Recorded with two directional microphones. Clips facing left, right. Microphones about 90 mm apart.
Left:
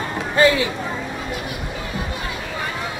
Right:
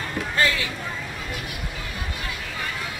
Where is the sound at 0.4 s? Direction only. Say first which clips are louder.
Left 8 dB; 20° left (ahead or behind).